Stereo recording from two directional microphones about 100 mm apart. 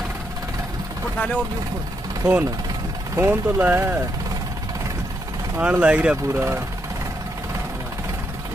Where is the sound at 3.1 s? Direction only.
20° right (ahead or behind).